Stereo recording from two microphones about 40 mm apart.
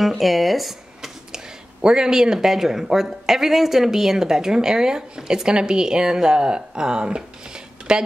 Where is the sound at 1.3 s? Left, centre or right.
Centre.